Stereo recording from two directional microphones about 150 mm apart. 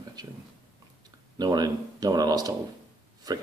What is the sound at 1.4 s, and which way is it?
Speech, 25° right (ahead or behind).